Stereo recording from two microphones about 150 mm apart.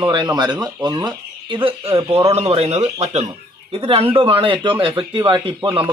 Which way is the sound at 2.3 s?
45° right (ahead or behind).